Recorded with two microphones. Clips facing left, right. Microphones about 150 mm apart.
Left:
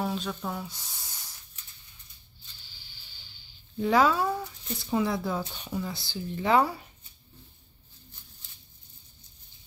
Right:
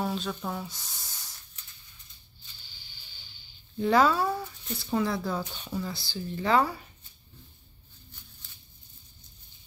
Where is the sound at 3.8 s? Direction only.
5° left (ahead or behind).